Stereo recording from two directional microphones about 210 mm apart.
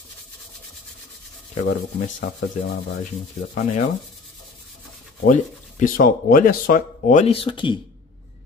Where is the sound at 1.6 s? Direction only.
35° left (ahead or behind).